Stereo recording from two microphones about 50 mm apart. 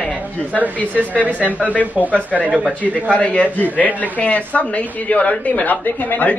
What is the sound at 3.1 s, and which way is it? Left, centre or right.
A man's voice, left.